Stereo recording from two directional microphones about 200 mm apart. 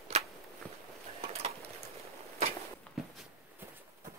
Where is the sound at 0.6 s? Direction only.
5° left (ahead or behind).